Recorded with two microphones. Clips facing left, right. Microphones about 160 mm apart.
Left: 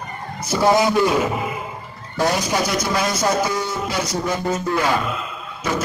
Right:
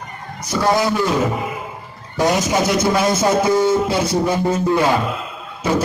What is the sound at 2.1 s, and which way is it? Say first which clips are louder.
A man's voice: right 3 dB; 25° right (ahead or behind).